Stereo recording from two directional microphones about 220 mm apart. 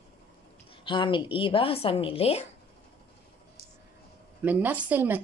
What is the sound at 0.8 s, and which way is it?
A woman's voice, 20° left (ahead or behind).